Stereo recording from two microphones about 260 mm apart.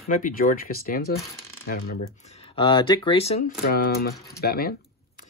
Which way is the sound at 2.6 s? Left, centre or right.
Centre.